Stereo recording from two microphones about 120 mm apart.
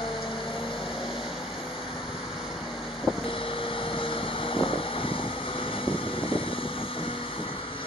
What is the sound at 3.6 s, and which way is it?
Vehicle, 45° left (ahead or behind).